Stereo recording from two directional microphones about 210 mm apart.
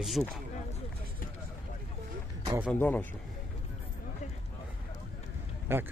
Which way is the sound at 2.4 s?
15° right (ahead or behind).